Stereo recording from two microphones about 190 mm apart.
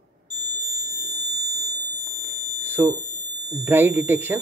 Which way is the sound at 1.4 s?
60° right (ahead or behind).